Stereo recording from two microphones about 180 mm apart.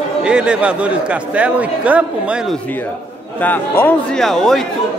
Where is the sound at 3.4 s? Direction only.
10° left (ahead or behind).